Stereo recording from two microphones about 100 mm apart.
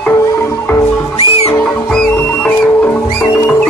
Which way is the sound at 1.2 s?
80° left.